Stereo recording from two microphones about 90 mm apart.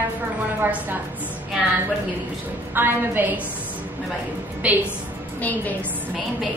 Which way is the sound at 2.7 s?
25° right (ahead or behind).